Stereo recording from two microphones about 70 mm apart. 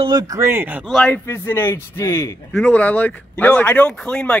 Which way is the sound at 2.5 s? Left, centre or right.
Left.